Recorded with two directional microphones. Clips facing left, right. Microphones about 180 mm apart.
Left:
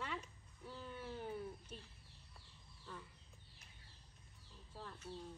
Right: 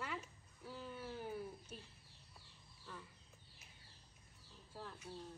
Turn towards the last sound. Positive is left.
turn(degrees=-10)  # may be behind; listen again after turning